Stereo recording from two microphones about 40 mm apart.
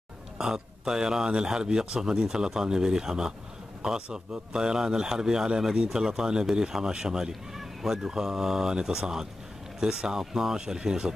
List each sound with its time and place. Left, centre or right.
0.4 s speech: centre
7.5 s speech: centre